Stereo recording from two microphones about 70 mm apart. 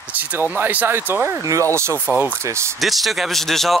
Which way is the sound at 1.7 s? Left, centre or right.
Right.